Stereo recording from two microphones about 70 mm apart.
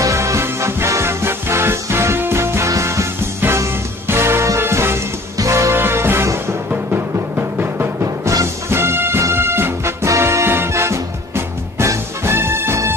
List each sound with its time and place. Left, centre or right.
0.0 s music: right
6.7 s music: right
8.0 s music: right
8.6 s music: right